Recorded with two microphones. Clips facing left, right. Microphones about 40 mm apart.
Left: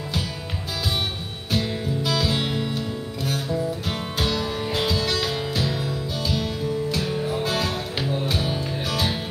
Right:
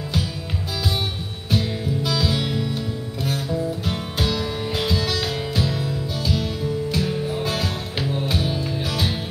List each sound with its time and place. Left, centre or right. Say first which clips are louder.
1.5 s music: right 1 dB; centre
2.3 s music: right 1 dB; centre
3.5 s music: right 1 dB; centre